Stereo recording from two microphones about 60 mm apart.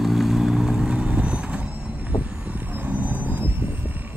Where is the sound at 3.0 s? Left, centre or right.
Right.